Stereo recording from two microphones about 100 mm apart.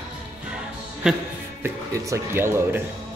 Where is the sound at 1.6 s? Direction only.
25° right (ahead or behind).